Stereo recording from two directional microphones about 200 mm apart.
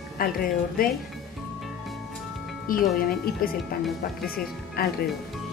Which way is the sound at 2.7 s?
45° left (ahead or behind).